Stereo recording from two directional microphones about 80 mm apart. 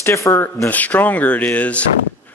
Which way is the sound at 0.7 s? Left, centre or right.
Left.